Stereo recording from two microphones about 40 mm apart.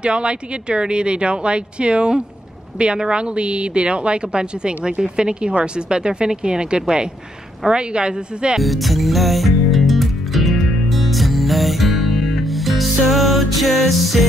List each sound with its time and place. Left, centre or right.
0.0 s a woman's voice: right
8.5 s music: centre